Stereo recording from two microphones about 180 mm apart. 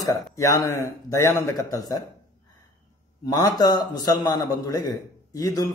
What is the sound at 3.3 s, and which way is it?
A man's voice, 20° left (ahead or behind).